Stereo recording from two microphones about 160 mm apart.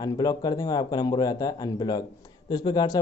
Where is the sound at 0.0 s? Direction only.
25° left (ahead or behind).